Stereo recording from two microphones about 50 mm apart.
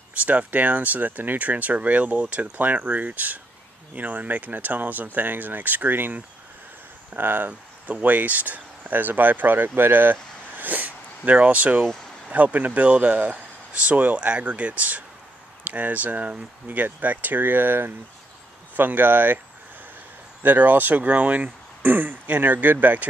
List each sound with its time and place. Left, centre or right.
0.2 s speech: right
20.4 s speech: right